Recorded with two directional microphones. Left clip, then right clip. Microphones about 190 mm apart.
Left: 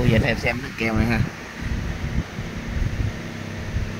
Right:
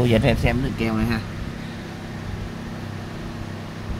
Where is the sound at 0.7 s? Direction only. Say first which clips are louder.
Left 2 dB; centre (ahead or behind).